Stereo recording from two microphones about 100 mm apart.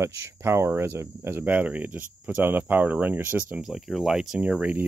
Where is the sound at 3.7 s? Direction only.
Centre (ahead or behind).